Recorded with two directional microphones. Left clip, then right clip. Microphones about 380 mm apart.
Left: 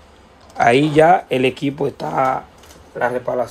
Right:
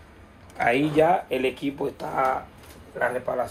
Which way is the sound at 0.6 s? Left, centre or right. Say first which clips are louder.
Left 8 dB; centre.